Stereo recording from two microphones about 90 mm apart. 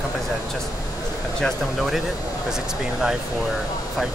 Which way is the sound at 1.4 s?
Centre (ahead or behind).